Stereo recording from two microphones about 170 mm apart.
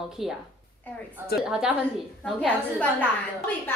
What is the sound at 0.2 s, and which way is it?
Speech, centre (ahead or behind).